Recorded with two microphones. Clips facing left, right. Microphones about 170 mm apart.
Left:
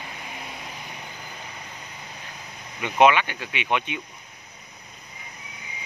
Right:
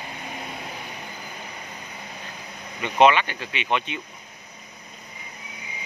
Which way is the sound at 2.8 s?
10° left (ahead or behind).